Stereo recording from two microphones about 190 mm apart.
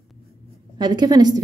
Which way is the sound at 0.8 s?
20° right (ahead or behind).